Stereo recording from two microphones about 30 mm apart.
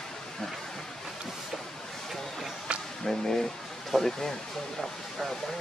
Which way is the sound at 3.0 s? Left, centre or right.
Centre.